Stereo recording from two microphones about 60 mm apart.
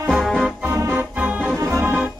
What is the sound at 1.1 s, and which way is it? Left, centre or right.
Music, right.